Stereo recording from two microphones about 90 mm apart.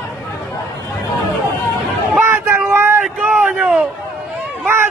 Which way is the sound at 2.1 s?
25° right (ahead or behind).